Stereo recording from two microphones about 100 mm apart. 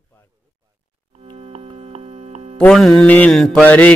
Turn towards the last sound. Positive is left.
turn(degrees=15)  # may be behind; listen again after turning